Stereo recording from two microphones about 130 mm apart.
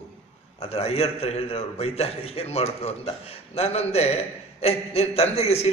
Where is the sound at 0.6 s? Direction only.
50° left (ahead or behind).